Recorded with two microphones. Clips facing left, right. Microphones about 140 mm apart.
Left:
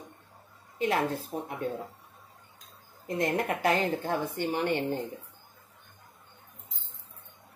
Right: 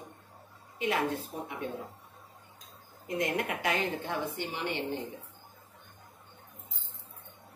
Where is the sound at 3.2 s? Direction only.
40° left (ahead or behind).